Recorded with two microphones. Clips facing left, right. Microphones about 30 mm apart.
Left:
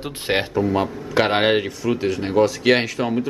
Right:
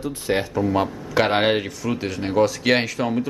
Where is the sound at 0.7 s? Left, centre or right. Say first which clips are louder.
Left 1 dB; centre.